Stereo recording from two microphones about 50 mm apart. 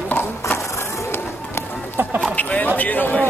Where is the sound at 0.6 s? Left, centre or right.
Left.